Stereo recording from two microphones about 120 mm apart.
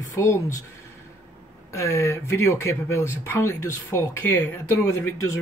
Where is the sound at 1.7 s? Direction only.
25° left (ahead or behind).